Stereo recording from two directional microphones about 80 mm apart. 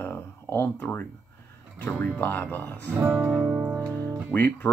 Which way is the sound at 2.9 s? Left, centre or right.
Right.